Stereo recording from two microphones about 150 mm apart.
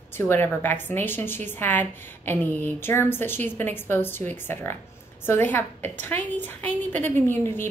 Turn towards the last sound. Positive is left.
turn(degrees=15)  # may be behind; listen again after turning